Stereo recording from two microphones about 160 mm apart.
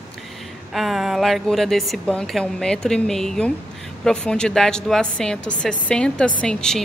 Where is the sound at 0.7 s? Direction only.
Centre (ahead or behind).